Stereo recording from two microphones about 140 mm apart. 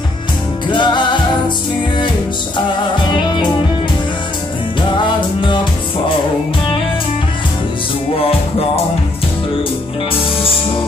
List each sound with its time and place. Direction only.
0.7 s music: 35° left (ahead or behind)
5.0 s music: 35° left (ahead or behind)
8.2 s music: 45° left (ahead or behind)